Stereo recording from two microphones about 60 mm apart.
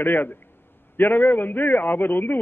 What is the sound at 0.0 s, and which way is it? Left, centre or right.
A man's voice, left.